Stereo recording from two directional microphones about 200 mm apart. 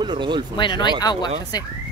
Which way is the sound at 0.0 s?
25° right (ahead or behind).